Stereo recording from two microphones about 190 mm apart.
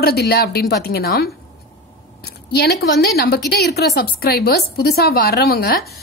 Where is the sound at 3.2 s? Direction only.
55° left (ahead or behind).